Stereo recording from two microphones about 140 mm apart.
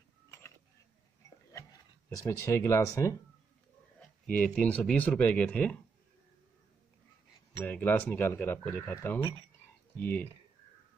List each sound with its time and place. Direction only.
1.5 s speech: 20° left (ahead or behind)
4.6 s speech: 10° left (ahead or behind)
7.5 s speech: 15° left (ahead or behind)